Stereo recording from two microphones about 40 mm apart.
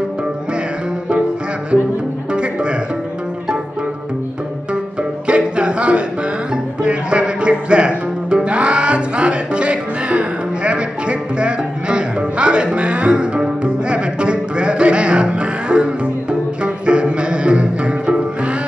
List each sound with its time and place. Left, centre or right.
5.3 s music: right